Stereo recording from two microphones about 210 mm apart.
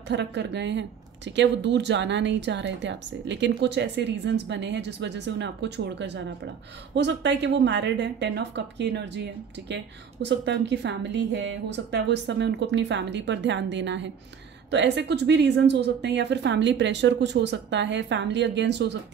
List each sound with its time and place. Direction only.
0.1 s speech: 55° right (ahead or behind)